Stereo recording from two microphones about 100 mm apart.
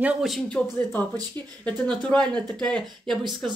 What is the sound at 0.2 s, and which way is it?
Speech, 5° left (ahead or behind).